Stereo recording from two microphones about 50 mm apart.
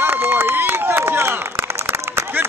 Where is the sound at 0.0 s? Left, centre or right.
Right.